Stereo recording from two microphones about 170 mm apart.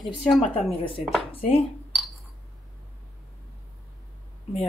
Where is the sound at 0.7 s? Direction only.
30° left (ahead or behind).